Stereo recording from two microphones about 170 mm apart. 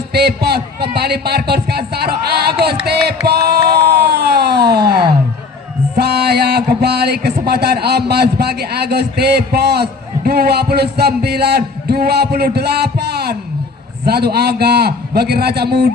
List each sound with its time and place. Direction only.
0.1 s speech: 70° right (ahead or behind)
4.0 s a sound: 70° right (ahead or behind)
5.9 s speech: 75° right (ahead or behind)